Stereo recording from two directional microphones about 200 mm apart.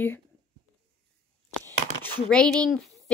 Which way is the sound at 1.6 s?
10° left (ahead or behind).